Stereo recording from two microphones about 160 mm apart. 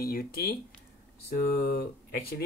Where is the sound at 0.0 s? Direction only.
70° left (ahead or behind).